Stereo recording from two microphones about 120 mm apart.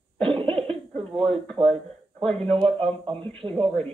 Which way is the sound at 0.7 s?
45° right (ahead or behind).